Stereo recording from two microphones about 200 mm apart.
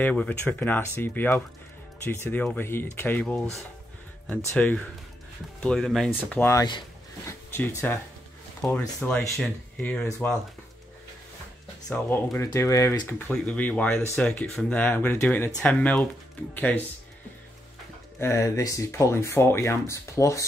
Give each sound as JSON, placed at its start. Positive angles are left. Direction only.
{"t": 0.0, "sound": "speech", "side_deg": 5}
{"t": 6.4, "sound": "speech", "side_deg": 20}
{"t": 11.9, "sound": "speech", "side_deg": 10}
{"t": 18.2, "sound": "speech", "side_deg": 15}